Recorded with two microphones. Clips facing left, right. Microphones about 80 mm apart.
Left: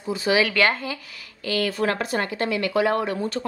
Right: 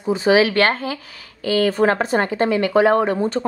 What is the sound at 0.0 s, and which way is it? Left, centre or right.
A woman's voice, right.